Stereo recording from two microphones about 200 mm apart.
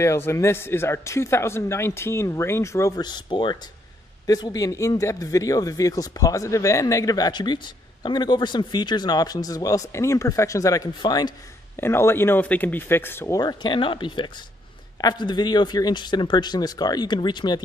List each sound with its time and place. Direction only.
0.0 s speech: 15° left (ahead or behind)